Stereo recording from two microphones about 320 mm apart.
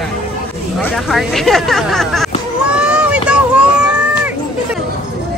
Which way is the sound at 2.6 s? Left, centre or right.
Centre.